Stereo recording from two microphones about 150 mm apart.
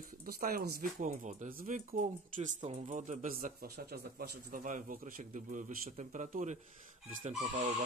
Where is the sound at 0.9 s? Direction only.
55° right (ahead or behind).